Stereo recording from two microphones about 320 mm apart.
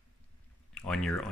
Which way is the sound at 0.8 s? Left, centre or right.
Centre.